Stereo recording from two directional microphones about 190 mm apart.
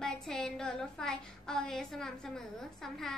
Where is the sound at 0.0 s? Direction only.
Centre (ahead or behind).